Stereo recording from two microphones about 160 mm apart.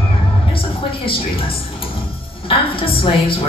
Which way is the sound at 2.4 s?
35° left (ahead or behind).